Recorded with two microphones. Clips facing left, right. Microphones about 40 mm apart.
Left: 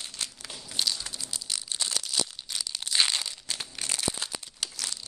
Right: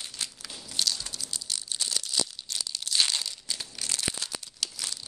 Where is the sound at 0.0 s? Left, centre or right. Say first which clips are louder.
Even; centre.